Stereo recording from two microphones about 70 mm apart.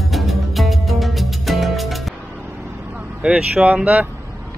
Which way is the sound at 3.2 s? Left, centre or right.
Centre.